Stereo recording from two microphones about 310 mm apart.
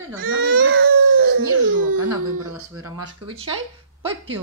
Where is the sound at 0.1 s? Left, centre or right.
Right.